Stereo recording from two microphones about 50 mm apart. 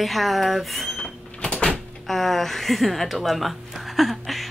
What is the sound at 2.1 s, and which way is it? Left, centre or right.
A woman's voice, centre.